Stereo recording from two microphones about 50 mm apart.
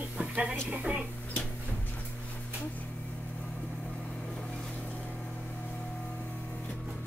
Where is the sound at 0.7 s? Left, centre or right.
Right.